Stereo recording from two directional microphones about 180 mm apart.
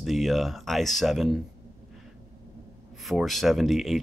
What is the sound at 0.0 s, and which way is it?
Speech, centre (ahead or behind).